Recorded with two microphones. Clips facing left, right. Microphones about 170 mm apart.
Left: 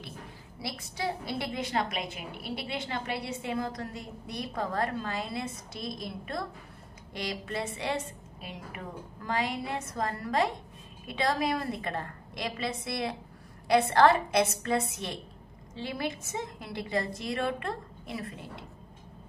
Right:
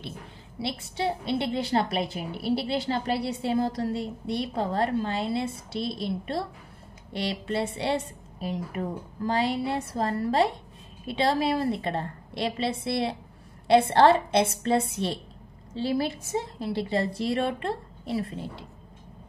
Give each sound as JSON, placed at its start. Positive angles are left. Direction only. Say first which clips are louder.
{"t": 0.6, "sound": "a woman's voice", "louder": "right 6 dB", "side_deg": -25}